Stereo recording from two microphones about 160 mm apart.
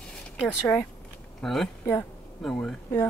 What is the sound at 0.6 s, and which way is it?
Speech, 15° left (ahead or behind).